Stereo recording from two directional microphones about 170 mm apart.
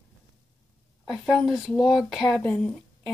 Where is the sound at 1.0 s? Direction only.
Centre (ahead or behind).